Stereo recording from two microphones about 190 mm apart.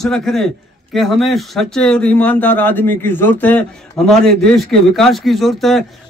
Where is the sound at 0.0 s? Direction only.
Centre (ahead or behind).